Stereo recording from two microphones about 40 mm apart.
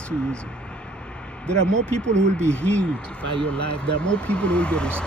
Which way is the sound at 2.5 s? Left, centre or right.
Left.